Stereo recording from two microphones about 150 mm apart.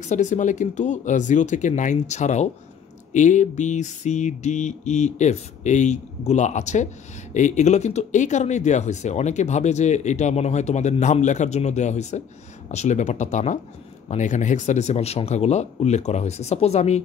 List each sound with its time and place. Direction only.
0.0 s speech: 55° left (ahead or behind)